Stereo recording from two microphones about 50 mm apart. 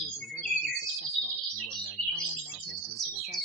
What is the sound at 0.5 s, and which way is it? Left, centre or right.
Bird, centre.